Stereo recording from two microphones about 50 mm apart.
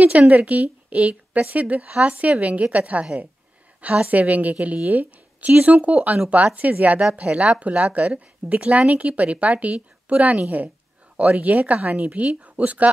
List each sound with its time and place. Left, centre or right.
0.1 s a woman's voice: right